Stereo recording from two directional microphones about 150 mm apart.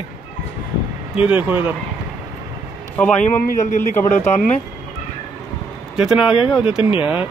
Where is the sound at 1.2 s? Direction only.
10° right (ahead or behind).